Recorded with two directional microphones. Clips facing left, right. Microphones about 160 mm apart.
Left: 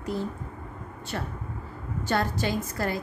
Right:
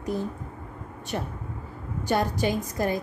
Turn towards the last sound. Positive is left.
turn(degrees=-15)  # may be behind; listen again after turning